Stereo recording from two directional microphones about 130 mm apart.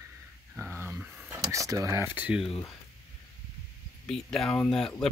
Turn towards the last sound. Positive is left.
turn(degrees=5)  # may be behind; listen again after turning